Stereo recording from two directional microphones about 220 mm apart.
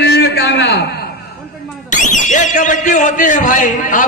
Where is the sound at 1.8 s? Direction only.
35° left (ahead or behind).